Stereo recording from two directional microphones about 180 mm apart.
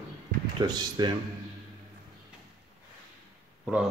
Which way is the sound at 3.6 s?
5° right (ahead or behind).